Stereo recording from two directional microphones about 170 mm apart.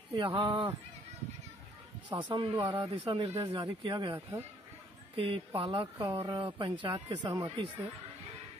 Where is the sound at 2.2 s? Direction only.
30° right (ahead or behind).